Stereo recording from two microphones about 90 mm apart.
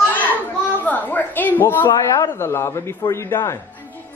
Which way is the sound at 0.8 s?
20° left (ahead or behind).